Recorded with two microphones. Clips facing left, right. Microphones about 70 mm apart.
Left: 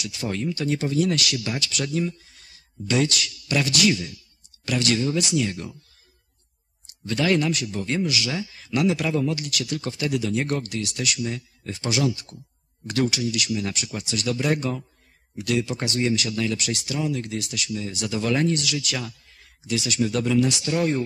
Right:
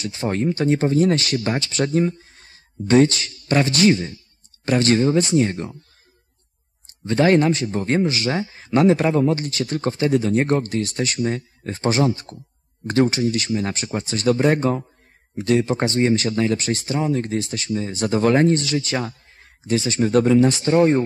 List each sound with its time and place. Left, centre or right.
0.0 s speech: right
6.9 s speech: right